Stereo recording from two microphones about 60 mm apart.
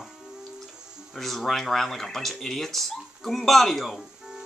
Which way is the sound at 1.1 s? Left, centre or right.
Centre.